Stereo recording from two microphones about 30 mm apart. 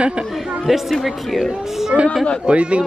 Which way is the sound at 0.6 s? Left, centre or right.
Centre.